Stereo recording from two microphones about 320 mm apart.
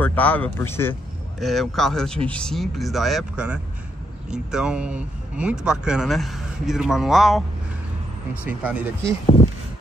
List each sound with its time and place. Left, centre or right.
0.0 s a man's voice: centre
8.5 s speech: centre
9.2 s speech: centre